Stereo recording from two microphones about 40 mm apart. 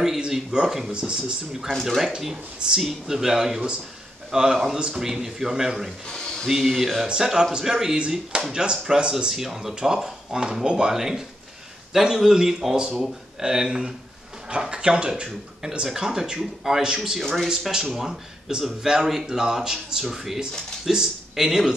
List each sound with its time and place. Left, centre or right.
0.7 s speech: centre
0.9 s speech: right
1.7 s speech: centre
2.0 s speech: centre
6.0 s a sound: centre
6.5 s speech: centre
17.2 s speech: centre
17.5 s speech: centre